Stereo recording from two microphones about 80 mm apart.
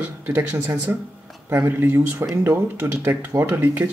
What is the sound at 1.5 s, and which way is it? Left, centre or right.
Speech, right.